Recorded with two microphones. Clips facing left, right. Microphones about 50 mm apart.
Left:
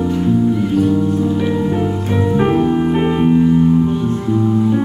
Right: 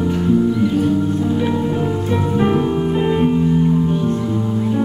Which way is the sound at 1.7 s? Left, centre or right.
Centre.